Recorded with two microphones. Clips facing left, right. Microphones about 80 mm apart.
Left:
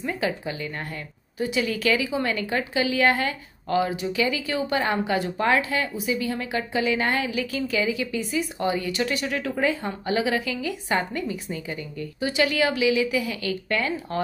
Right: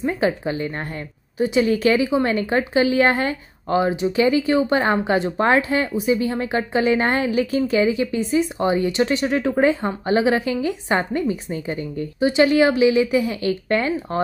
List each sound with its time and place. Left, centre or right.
0.0 s speech: right